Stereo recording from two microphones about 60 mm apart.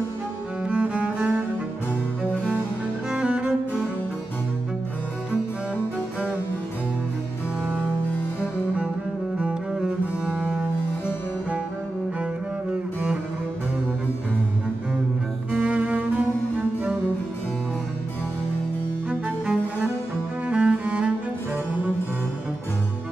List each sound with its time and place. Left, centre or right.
0.7 s cello: centre
3.1 s cello: centre
9.4 s double bass: centre
15.5 s cello: centre
19.0 s cello: centre
20.4 s music: centre